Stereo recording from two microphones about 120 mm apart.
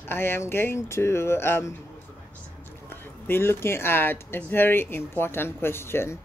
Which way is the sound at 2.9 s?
20° left (ahead or behind).